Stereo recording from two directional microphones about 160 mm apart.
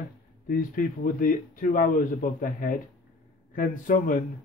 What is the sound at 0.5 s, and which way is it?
A man's voice, 60° left (ahead or behind).